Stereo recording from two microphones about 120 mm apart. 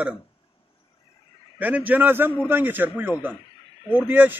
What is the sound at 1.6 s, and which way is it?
A man's voice, 15° right (ahead or behind).